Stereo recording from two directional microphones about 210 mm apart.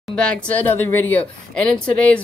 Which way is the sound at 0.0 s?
5° left (ahead or behind).